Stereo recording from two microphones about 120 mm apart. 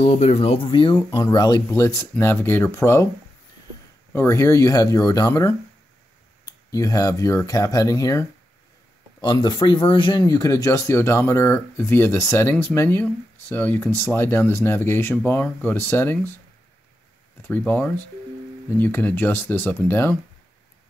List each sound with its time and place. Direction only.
0.0 s speech: 65° left (ahead or behind); by 3.1 s 25° left (ahead or behind)
4.1 s speech: 25° left (ahead or behind)
9.2 s speech: 40° left (ahead or behind); by 16.2 s 20° left (ahead or behind)
17.4 s speech: 15° left (ahead or behind)